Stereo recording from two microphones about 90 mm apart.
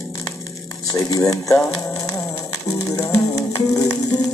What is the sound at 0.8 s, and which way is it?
Music, 40° left (ahead or behind).